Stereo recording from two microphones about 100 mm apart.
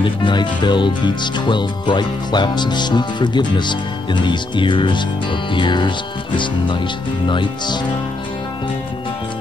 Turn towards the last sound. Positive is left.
turn(degrees=50)  # may be behind; listen again after turning